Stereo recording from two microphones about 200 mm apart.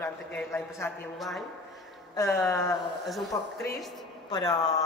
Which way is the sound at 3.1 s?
Centre (ahead or behind).